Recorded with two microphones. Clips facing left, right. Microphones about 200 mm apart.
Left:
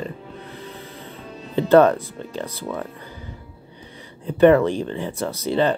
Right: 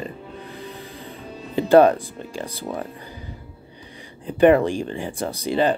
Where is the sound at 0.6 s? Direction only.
15° right (ahead or behind).